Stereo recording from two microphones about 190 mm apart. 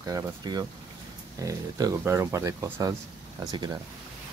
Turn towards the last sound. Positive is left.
turn(degrees=-20)  # may be behind; listen again after turning